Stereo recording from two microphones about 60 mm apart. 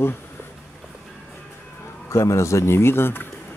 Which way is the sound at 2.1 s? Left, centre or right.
Left.